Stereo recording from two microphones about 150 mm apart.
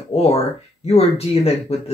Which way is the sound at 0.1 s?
45° left (ahead or behind).